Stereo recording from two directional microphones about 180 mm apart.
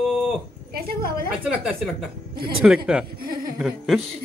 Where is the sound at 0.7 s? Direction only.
55° right (ahead or behind).